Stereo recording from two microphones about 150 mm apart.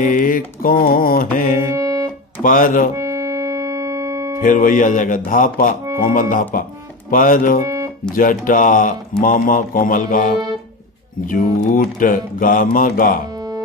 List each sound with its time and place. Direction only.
0.0 s mantra: 65° left (ahead or behind)
1.6 s music: 20° right (ahead or behind)
2.4 s speech: 65° left (ahead or behind)
3.0 s music: 20° right (ahead or behind)
4.4 s speech: 60° left (ahead or behind)
7.6 s music: 20° right (ahead or behind)
8.1 s speech: 65° left (ahead or behind)